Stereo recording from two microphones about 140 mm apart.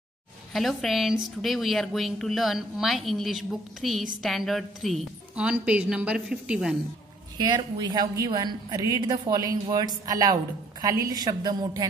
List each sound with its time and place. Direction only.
0.5 s a woman's voice: centre (ahead or behind)
7.3 s a woman's voice: 30° right (ahead or behind)